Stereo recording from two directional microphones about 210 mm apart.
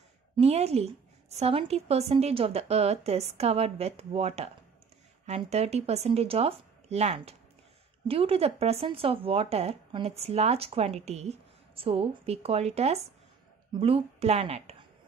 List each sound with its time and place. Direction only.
0.4 s speech: 30° right (ahead or behind)